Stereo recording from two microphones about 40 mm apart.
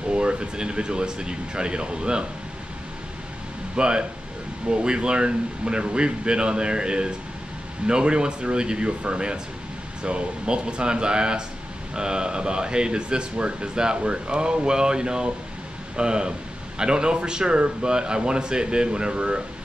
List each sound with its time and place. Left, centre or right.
0.1 s speech: right
3.7 s speech: right